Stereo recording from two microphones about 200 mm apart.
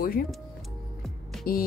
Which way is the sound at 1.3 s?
Centre (ahead or behind).